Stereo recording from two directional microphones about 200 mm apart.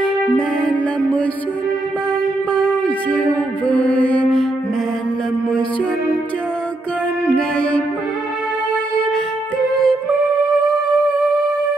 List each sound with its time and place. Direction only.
0.4 s music: 5° left (ahead or behind)
3.1 s music: 5° left (ahead or behind)
7.2 s music: 5° left (ahead or behind)
9.8 s music: 5° left (ahead or behind)